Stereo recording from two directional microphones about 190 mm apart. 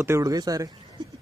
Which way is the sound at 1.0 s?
25° right (ahead or behind).